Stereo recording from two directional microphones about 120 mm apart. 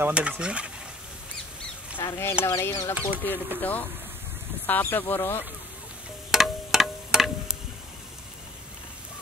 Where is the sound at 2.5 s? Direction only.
25° left (ahead or behind).